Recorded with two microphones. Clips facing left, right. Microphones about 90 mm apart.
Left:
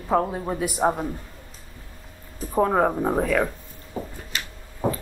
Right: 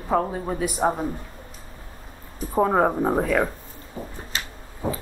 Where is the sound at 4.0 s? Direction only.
40° left (ahead or behind).